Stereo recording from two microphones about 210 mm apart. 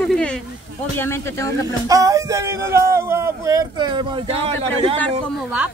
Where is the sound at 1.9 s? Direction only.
15° right (ahead or behind).